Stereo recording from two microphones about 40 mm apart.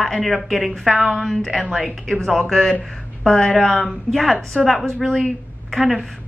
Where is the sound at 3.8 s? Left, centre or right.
Centre.